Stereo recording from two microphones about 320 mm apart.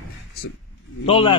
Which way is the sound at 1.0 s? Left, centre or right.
Centre.